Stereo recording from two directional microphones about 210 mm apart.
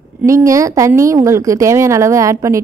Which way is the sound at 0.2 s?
15° right (ahead or behind).